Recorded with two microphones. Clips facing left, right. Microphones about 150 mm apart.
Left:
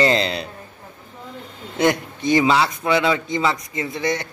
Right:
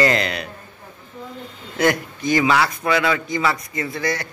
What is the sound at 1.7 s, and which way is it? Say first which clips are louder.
A man's voice: even; 25° left (ahead or behind).